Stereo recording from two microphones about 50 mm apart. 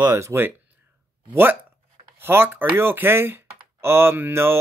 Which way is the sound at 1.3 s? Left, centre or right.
Right.